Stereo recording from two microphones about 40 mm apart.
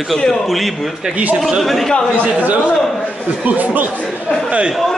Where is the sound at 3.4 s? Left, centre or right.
Right.